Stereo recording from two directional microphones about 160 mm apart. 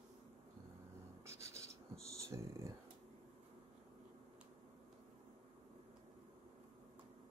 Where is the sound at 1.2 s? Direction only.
20° right (ahead or behind).